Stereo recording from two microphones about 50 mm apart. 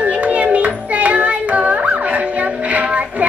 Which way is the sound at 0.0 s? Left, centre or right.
Right.